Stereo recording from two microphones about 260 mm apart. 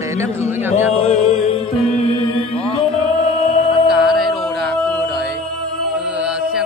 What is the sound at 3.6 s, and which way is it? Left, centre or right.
Music, centre.